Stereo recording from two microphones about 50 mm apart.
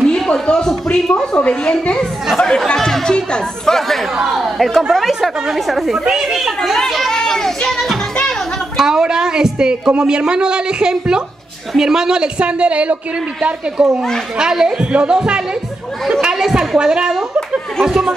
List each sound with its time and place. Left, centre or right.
0.0 s a sound: centre
0.9 s a woman's voice: left
4.2 s speech: centre
8.7 s a woman's voice: centre